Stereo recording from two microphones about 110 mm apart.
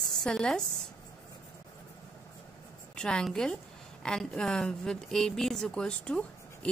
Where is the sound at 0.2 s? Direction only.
5° left (ahead or behind).